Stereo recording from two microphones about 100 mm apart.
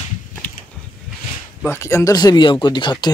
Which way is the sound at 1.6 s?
25° left (ahead or behind).